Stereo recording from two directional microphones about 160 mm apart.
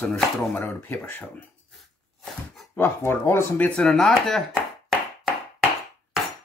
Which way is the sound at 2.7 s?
15° left (ahead or behind).